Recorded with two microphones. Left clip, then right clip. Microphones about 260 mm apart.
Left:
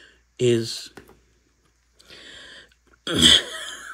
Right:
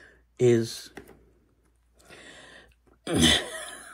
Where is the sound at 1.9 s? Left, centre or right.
Centre.